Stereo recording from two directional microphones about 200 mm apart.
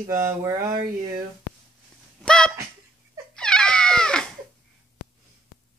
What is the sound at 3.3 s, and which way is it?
Cat, 5° left (ahead or behind).